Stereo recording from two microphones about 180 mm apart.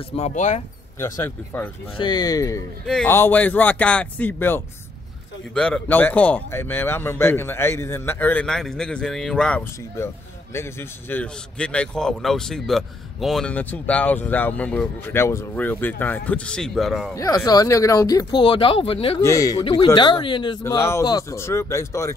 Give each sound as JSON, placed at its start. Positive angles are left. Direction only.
{"t": 0.1, "sound": "speech", "side_deg": 40}
{"t": 0.9, "sound": "speech", "side_deg": 15}
{"t": 2.0, "sound": "speech", "side_deg": 25}
{"t": 17.1, "sound": "speech", "side_deg": 20}
{"t": 19.2, "sound": "speech", "side_deg": 20}
{"t": 20.6, "sound": "speech", "side_deg": 15}